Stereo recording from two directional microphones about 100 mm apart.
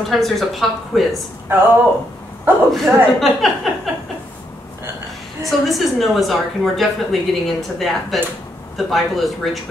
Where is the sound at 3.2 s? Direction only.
Centre (ahead or behind).